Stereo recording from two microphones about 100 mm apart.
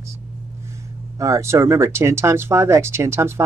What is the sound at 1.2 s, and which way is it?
Speech, 30° right (ahead or behind).